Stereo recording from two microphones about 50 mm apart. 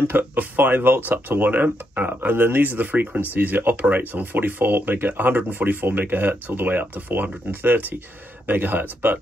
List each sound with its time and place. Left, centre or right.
0.4 s speech: right